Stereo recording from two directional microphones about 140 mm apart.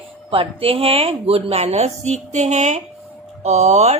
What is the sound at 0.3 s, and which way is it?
A woman's voice, 40° right (ahead or behind).